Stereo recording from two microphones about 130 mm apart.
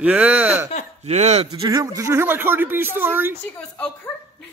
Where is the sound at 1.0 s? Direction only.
55° right (ahead or behind).